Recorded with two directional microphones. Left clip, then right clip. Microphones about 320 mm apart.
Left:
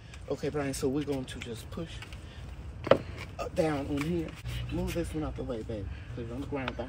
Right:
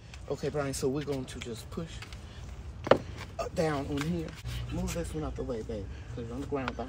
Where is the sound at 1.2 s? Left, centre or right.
Centre.